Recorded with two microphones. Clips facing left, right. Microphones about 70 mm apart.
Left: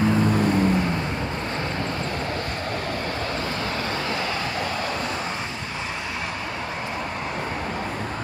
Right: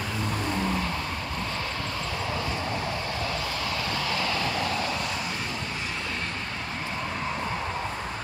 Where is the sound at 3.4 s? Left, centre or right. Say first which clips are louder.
Left 3 dB; left.